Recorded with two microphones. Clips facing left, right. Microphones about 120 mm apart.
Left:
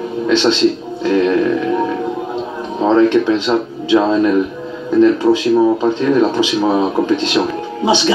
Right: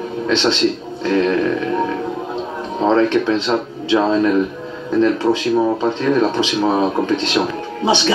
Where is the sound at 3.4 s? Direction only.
10° left (ahead or behind).